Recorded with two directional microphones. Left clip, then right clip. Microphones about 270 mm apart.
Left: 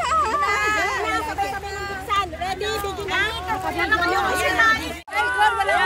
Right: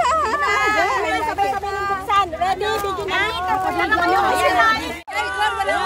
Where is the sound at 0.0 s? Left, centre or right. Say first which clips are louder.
Right 2 dB; right.